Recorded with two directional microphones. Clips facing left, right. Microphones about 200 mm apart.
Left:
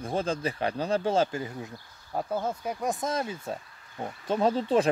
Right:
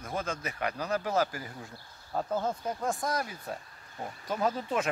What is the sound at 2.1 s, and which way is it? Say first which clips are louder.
Speech: left 1 dB; 10° left (ahead or behind).